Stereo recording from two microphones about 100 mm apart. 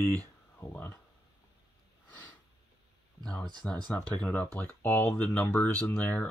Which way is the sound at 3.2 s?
10° left (ahead or behind).